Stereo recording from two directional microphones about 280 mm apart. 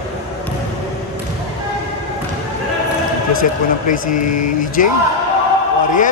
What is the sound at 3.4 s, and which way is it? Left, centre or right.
Speech, left.